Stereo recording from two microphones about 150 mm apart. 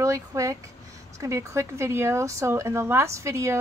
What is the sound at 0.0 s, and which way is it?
Speech, 20° right (ahead or behind).